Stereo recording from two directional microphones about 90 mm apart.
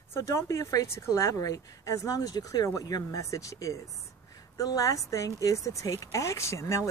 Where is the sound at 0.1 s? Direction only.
30° left (ahead or behind).